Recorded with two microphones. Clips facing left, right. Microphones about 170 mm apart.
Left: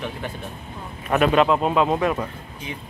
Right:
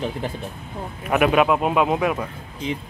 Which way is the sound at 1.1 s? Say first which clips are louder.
Even; 10° right (ahead or behind).